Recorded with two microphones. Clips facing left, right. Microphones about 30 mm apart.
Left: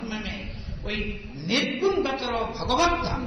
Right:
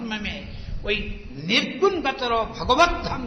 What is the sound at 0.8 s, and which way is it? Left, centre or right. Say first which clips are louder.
Speech: right 6 dB; right.